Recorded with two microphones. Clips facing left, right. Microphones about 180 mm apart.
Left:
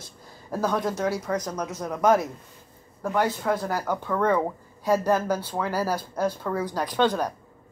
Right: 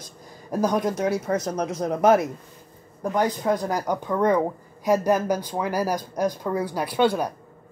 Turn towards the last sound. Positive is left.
turn(degrees=-10)  # may be behind; listen again after turning